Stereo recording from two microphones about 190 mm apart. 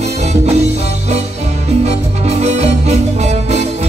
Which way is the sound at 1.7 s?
35° right (ahead or behind).